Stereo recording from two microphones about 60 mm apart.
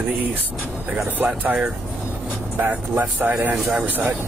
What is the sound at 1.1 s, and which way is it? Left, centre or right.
Speech, right.